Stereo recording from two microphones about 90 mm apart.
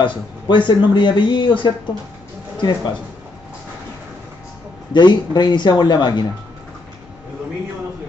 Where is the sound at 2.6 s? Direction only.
50° left (ahead or behind).